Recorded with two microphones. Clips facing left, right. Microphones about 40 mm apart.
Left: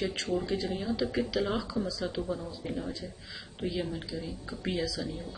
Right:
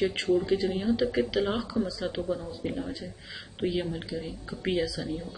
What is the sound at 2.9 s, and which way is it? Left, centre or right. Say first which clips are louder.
Speech: right 2 dB; centre.